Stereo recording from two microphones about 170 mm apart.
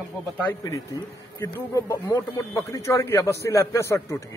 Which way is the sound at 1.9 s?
15° left (ahead or behind).